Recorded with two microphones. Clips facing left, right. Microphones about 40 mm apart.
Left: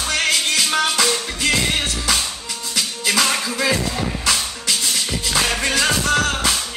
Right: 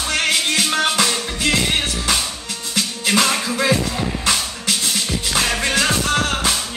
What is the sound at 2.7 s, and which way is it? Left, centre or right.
Music, right.